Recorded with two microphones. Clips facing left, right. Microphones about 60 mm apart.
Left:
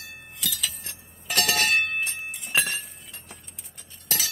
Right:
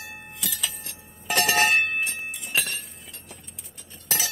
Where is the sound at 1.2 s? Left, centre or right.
Right.